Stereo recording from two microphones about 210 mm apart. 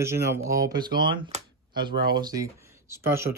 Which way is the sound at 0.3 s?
15° right (ahead or behind).